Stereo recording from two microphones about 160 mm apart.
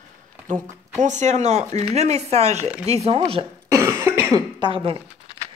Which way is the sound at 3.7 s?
15° right (ahead or behind).